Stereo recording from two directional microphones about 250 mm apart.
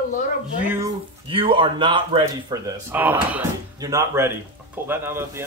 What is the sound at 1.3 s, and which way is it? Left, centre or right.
Speech, right.